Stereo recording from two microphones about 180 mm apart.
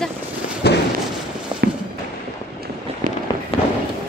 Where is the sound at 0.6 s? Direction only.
65° left (ahead or behind).